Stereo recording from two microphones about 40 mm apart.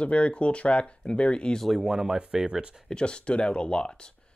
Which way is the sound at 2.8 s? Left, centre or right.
Left.